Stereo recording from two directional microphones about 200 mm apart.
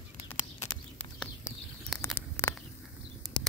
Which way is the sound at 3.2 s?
20° right (ahead or behind).